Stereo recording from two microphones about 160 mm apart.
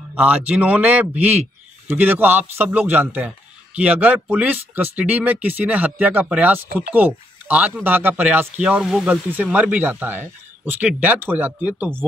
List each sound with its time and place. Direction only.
0.1 s speech: 10° right (ahead or behind)